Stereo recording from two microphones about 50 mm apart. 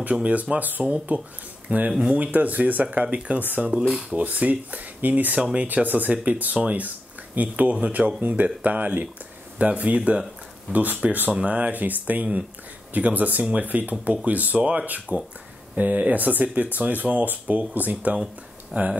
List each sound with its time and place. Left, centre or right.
0.1 s speech: right
1.9 s speech: centre
2.1 s speech: right
5.4 s speech: right
5.7 s speech: right
18.1 s speech: centre